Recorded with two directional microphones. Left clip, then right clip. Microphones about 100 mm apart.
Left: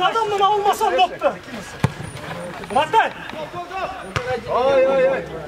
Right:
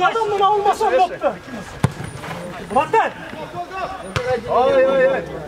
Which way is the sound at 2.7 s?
45° left (ahead or behind).